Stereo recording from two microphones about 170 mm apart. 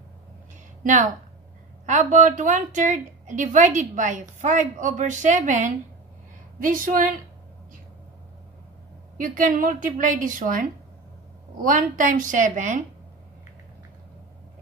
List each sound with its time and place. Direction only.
0.8 s a woman's voice: 45° right (ahead or behind)
9.2 s a woman's voice: 55° right (ahead or behind)